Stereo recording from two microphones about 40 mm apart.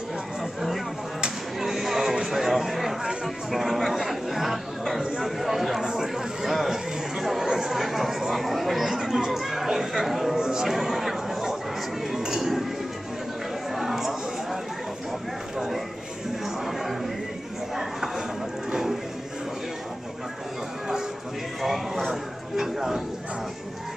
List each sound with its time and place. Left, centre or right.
1.6 s music: centre
3.5 s chatter: centre
12.2 s chink: centre
13.7 s chatter: centre
18.7 s a sound: centre
21.6 s a sound: centre